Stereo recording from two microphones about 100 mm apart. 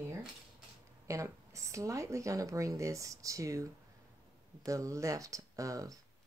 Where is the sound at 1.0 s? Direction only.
30° right (ahead or behind).